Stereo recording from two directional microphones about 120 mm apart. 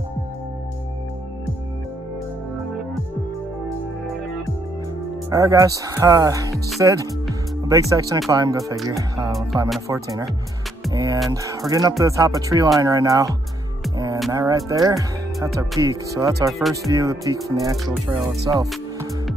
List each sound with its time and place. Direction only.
5.3 s speech: 25° right (ahead or behind)
10.9 s music: 30° right (ahead or behind)
12.0 s speech: 25° right (ahead or behind)
13.9 s music: 30° right (ahead or behind)
14.3 s speech: 30° right (ahead or behind)
16.5 s speech: centre (ahead or behind)
16.9 s speech: 30° right (ahead or behind)